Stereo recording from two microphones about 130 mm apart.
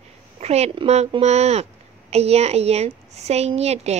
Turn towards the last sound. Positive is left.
turn(degrees=-55)  # may be behind; listen again after turning